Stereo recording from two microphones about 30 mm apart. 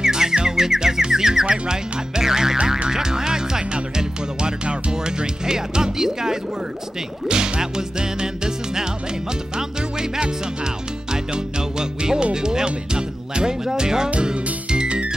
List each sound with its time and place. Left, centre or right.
0.0 s music: right
1.5 s speech: right
2.9 s music: centre
7.2 s whip: right
7.7 s music: right